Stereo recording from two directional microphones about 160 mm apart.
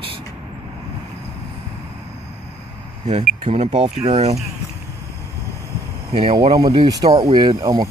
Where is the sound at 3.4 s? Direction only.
40° right (ahead or behind).